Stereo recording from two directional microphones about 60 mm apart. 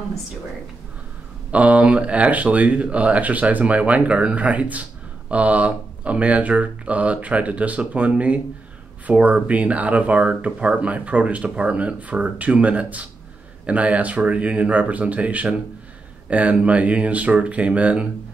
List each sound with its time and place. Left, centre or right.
1.5 s speech: right